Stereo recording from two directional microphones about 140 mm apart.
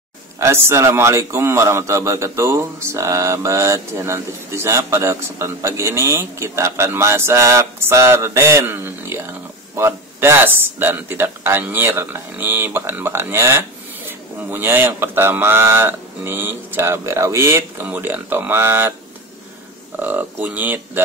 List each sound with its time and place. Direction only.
0.4 s a man's voice: 20° right (ahead or behind)
20.0 s speech: 10° right (ahead or behind)